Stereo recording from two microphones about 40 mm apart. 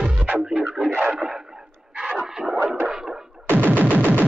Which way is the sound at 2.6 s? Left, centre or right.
Right.